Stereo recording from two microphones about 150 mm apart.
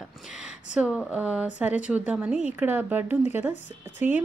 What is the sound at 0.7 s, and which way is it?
A woman's voice, 5° right (ahead or behind).